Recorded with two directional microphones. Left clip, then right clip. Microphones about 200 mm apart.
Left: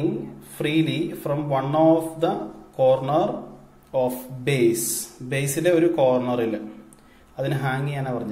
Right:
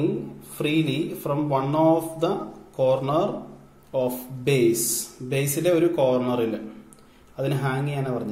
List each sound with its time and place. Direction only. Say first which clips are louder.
0.6 s speech: left 1 dB; 20° right (ahead or behind)
7.3 s speech: left 1 dB; 15° right (ahead or behind)